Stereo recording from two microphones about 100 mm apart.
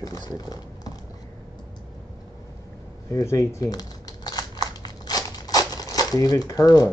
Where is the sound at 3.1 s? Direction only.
30° left (ahead or behind).